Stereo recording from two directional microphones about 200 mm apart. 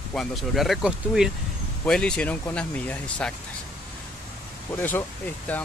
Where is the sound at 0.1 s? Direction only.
Centre (ahead or behind).